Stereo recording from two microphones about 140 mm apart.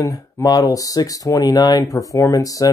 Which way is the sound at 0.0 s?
25° left (ahead or behind).